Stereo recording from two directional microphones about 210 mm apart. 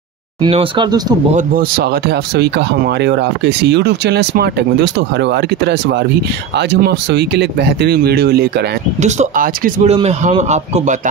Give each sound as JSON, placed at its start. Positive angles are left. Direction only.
{"t": 0.4, "sound": "speech", "side_deg": -25}
{"t": 1.3, "sound": "speech", "side_deg": -45}
{"t": 9.0, "sound": "a man's voice", "side_deg": -35}